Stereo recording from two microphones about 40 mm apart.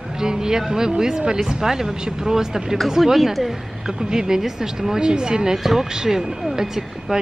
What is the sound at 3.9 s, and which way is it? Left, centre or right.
A woman's voice, centre.